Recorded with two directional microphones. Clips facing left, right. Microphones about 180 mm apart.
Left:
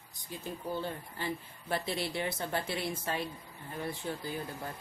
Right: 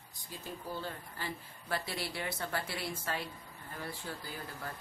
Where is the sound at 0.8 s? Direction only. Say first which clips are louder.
Left 4 dB; 20° left (ahead or behind).